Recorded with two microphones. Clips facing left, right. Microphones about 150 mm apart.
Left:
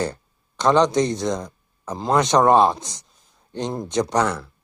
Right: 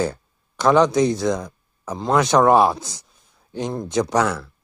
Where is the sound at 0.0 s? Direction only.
5° right (ahead or behind).